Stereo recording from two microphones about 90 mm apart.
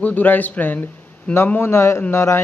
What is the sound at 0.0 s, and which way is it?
Speech, 20° left (ahead or behind).